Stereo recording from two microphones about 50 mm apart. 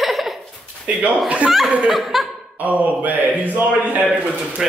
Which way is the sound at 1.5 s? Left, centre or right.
Centre.